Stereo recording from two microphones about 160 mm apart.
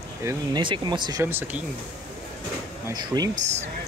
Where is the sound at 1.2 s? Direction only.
15° right (ahead or behind).